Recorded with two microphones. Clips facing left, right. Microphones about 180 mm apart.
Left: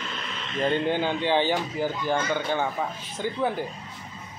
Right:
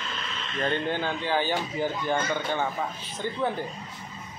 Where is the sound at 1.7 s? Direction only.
5° left (ahead or behind).